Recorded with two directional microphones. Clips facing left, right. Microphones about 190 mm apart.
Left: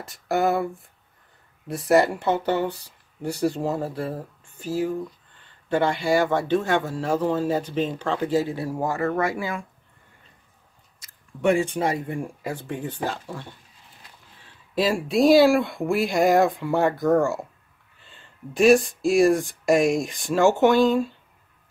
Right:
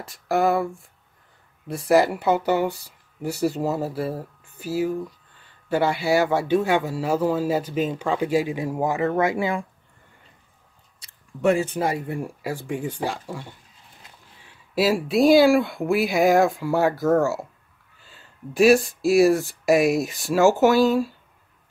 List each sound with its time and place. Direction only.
0.0 s speech: centre (ahead or behind); by 9.7 s 25° right (ahead or behind)
11.0 s a sound: 30° right (ahead or behind)
11.4 s speech: 5° right (ahead or behind)